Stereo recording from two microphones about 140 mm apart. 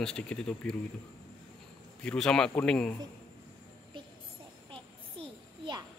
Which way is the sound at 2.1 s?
5° left (ahead or behind).